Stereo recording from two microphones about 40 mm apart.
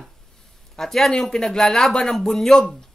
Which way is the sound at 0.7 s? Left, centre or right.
Centre.